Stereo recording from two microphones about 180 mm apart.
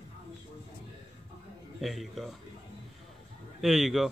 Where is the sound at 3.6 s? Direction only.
Centre (ahead or behind).